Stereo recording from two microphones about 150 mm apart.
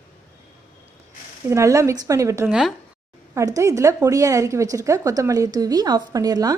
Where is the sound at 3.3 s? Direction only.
20° right (ahead or behind).